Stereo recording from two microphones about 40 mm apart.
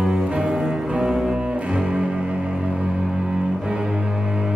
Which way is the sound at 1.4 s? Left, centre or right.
Right.